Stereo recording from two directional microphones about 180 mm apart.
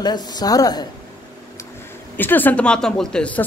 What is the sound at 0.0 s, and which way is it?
Speech, 20° left (ahead or behind).